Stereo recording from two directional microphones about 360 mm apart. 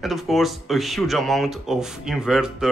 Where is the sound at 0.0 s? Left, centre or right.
Centre.